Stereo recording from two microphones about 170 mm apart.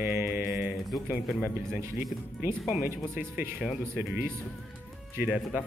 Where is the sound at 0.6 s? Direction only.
Centre (ahead or behind).